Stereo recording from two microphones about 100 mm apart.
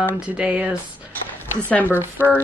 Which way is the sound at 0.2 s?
10° right (ahead or behind).